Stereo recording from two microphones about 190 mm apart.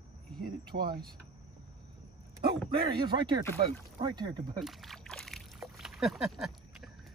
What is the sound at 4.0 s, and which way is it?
Speech, 20° right (ahead or behind).